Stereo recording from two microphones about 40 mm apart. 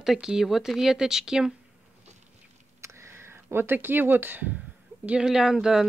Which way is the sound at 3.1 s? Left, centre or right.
Right.